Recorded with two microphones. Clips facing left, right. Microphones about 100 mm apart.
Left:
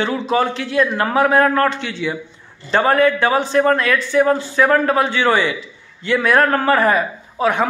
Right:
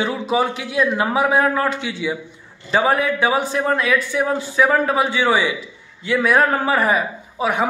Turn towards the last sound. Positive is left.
turn(degrees=-5)  # may be behind; listen again after turning